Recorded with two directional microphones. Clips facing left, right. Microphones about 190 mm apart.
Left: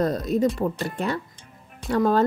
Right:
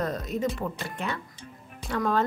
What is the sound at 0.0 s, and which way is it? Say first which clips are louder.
A woman's voice: left 7 dB; 35° left (ahead or behind).